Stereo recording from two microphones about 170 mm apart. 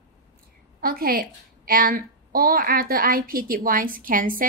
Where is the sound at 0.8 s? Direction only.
60° right (ahead or behind).